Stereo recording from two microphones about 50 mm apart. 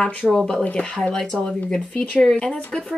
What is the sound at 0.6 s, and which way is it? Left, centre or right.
Speech, left.